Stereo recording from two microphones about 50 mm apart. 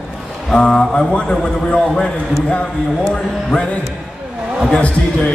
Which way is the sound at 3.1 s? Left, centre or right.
Centre.